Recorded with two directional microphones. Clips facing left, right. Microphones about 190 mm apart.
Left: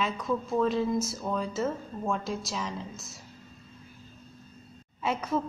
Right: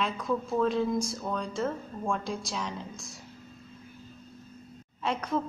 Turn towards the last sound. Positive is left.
turn(degrees=5)  # may be behind; listen again after turning